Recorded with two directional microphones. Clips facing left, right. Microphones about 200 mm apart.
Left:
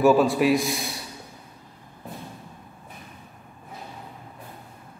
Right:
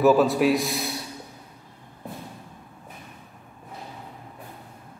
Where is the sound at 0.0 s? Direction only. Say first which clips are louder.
Even; centre (ahead or behind).